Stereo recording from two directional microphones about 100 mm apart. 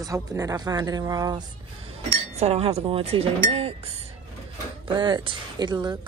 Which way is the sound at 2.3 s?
90° right.